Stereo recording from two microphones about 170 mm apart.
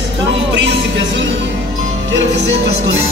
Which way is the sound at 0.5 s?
90° right.